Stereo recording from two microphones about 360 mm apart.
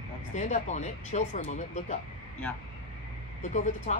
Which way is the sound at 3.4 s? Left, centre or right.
Centre.